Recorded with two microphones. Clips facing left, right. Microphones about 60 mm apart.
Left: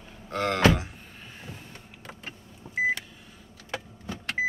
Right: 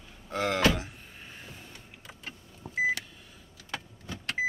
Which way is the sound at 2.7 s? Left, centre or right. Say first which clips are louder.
Left 2 dB; left.